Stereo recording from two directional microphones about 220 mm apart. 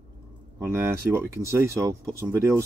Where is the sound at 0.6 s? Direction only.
10° right (ahead or behind).